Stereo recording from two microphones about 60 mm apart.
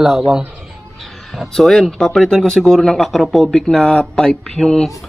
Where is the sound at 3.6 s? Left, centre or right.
Centre.